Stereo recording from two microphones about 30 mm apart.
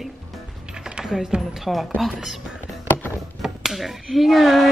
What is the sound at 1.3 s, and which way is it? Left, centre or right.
Speech, right.